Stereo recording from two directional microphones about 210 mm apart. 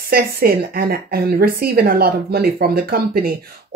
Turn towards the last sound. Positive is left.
turn(degrees=-45)  # may be behind; listen again after turning